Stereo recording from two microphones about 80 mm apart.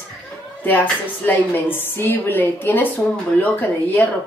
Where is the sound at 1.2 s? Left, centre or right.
Left.